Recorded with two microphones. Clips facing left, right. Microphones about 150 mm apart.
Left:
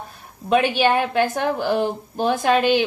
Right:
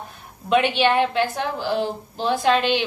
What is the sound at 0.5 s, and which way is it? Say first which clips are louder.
A woman's voice: left 1 dB; 45° left (ahead or behind).